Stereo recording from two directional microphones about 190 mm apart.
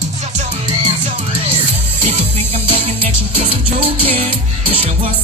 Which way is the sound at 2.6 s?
40° right (ahead or behind).